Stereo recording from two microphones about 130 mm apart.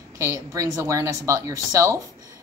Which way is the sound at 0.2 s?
25° right (ahead or behind).